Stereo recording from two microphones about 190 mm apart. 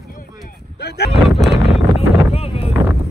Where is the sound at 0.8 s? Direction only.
60° left (ahead or behind).